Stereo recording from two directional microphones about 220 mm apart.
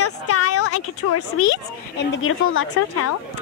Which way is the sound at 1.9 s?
60° left (ahead or behind).